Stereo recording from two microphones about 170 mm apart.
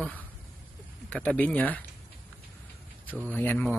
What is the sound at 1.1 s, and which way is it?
Speech, 10° left (ahead or behind).